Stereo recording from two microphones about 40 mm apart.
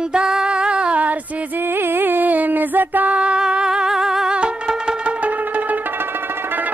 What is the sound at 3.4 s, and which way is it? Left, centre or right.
Humming, centre.